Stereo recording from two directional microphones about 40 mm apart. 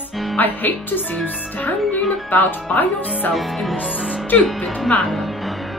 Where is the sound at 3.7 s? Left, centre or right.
Right.